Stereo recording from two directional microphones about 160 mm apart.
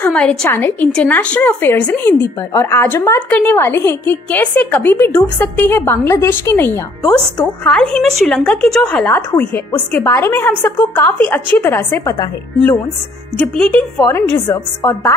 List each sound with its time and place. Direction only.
0.0 s a woman's voice: 5° left (ahead or behind)
13.4 s a woman's voice: 10° left (ahead or behind)
14.8 s music: 20° left (ahead or behind)